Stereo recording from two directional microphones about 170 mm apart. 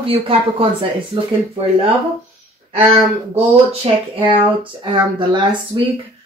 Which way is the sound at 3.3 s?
35° right (ahead or behind).